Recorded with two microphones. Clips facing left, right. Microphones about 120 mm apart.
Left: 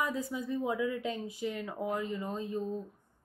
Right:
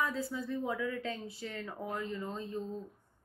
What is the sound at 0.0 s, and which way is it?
Speech, 15° left (ahead or behind).